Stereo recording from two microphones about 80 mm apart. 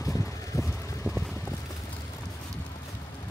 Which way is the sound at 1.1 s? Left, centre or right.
Left.